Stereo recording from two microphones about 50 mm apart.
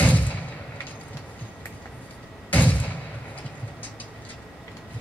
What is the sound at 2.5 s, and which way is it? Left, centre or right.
Thump, left.